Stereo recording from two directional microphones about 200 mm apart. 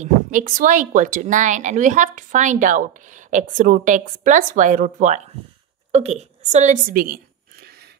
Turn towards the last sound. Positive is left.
turn(degrees=-45)  # may be behind; listen again after turning